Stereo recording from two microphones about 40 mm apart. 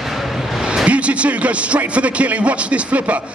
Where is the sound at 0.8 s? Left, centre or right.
Right.